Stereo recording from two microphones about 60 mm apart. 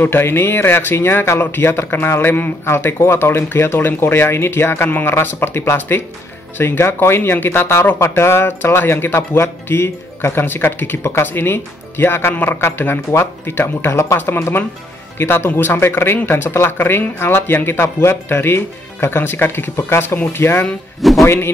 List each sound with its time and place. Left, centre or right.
0.0 s speech: left
11.0 s a man's voice: left